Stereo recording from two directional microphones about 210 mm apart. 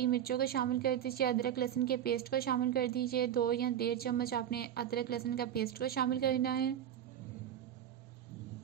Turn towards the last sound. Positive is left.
turn(degrees=45)  # may be behind; listen again after turning